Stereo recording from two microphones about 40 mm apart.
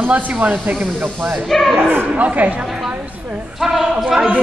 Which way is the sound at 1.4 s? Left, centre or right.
Centre.